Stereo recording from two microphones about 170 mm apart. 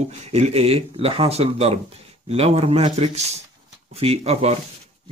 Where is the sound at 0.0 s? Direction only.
40° right (ahead or behind).